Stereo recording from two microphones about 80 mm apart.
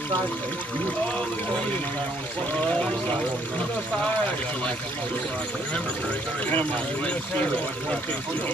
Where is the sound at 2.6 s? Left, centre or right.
Centre.